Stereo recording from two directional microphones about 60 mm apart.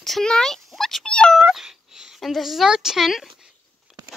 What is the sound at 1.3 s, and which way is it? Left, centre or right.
Cat, centre.